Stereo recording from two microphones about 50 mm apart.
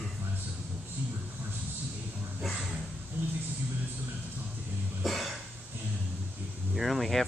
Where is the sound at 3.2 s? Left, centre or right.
Right.